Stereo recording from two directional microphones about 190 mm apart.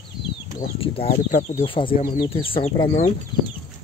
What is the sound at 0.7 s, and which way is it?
Speech, 30° left (ahead or behind).